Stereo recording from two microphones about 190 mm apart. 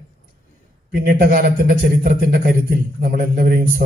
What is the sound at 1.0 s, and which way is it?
A man's voice, 50° right (ahead or behind).